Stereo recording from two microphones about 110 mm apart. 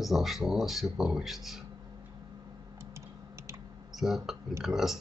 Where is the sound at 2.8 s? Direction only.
25° right (ahead or behind).